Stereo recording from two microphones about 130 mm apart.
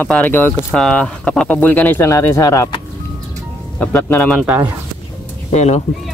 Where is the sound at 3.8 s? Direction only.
15° left (ahead or behind).